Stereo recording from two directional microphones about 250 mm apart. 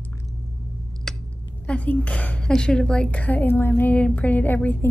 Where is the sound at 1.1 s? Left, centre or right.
Centre.